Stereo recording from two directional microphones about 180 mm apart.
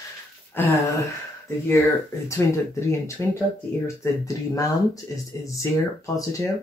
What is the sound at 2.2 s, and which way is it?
Speech, 15° left (ahead or behind).